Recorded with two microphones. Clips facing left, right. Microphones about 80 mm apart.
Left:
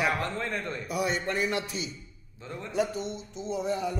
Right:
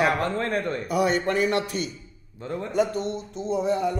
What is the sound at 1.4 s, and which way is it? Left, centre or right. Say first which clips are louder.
Speech: right 6 dB; right.